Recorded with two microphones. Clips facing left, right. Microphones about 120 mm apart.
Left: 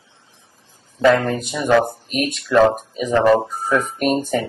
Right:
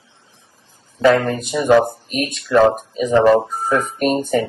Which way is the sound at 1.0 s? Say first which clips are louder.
Right 1 dB; centre (ahead or behind).